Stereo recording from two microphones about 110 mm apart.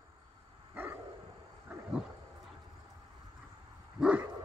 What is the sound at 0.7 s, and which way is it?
Dog, 15° right (ahead or behind).